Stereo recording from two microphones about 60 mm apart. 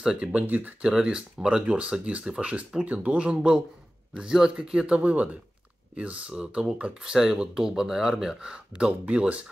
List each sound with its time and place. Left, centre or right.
0.0 s speech: centre
0.8 s speech: centre